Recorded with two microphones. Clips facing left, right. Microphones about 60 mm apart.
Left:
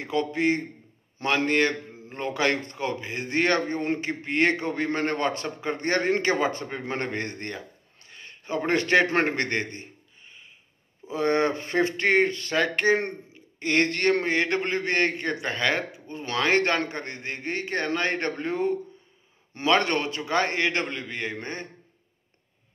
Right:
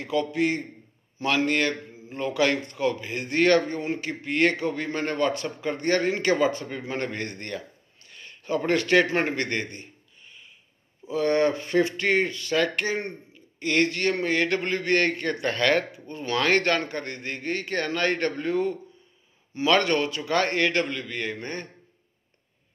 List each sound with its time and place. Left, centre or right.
0.0 s a man's voice: left
11.1 s a man's voice: left
14.2 s a man's voice: left